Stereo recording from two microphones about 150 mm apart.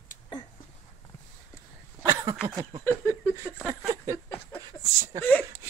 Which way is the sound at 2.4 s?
25° right (ahead or behind).